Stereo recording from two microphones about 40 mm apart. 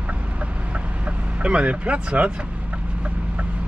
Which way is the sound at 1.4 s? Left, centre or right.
Right.